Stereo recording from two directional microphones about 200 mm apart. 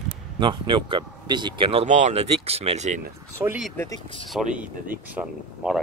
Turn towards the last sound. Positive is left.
turn(degrees=-5)  # may be behind; listen again after turning